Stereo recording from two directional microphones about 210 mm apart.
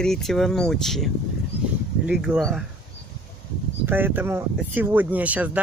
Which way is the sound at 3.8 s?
10° right (ahead or behind).